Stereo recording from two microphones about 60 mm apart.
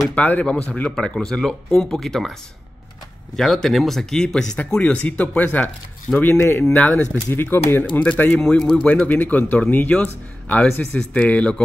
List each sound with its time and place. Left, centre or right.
0.1 s speech: left
0.9 s speech: centre
3.3 s speech: centre; by 5.7 s left
6.2 s speech: left
6.7 s speech: left
8.0 s speech: left
8.4 s speech: centre
9.0 s speech: left